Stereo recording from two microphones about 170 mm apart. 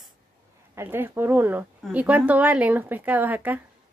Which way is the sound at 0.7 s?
15° right (ahead or behind).